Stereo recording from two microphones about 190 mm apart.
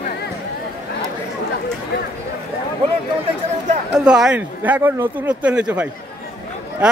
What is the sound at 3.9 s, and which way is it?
Speech, 5° right (ahead or behind).